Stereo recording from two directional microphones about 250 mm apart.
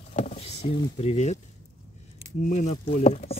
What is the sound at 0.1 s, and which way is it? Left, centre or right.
Vehicle, left.